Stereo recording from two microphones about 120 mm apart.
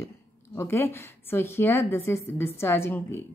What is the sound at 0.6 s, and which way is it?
A woman's voice, 20° left (ahead or behind).